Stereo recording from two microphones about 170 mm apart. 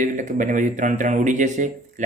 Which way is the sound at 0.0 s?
45° right (ahead or behind).